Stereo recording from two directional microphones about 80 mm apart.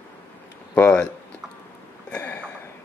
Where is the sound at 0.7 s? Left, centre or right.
Left.